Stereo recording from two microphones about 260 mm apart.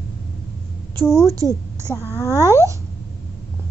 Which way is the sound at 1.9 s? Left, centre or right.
Centre.